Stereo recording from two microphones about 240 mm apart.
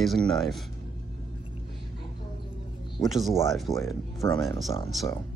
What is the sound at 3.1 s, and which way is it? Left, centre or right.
Speech, centre.